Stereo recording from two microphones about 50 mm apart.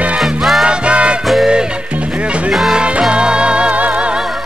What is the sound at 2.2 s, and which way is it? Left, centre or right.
Music, right.